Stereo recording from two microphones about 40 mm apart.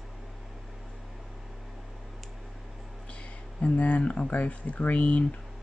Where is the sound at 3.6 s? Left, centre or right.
Left.